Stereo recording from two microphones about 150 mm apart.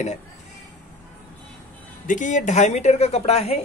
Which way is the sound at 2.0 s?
55° left (ahead or behind).